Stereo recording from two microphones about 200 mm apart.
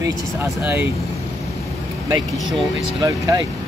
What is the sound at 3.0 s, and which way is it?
Speech, 15° right (ahead or behind).